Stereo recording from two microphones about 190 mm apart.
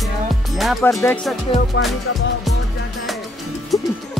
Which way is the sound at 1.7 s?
70° left (ahead or behind).